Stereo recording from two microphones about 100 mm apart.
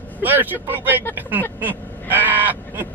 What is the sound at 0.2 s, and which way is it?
Speech, 20° right (ahead or behind).